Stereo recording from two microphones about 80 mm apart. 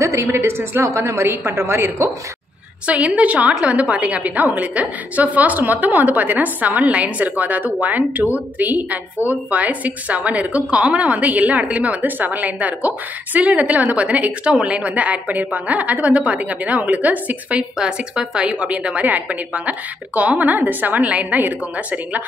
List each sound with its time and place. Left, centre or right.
0.0 s a woman's voice: right
2.9 s a woman's voice: centre